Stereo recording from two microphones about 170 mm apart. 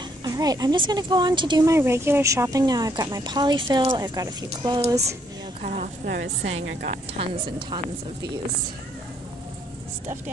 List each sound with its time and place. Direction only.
0.2 s a woman's voice: 20° right (ahead or behind)
1.7 s a woman's voice: 15° right (ahead or behind)
5.6 s a woman's voice: 50° right (ahead or behind)
7.2 s a woman's voice: 30° right (ahead or behind)